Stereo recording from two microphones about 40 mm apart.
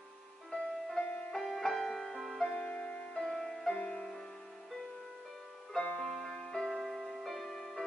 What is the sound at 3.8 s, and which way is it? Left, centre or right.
Music, centre.